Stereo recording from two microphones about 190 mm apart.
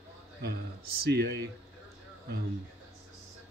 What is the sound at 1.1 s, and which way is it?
Speech, 55° right (ahead or behind).